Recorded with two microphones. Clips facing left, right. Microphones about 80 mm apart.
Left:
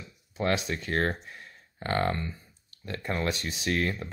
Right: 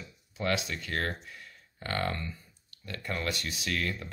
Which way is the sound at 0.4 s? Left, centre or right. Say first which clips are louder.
Left 3 dB; left.